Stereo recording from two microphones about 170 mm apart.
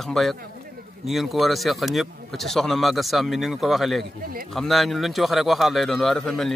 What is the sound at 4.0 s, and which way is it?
Speech, 60° right (ahead or behind).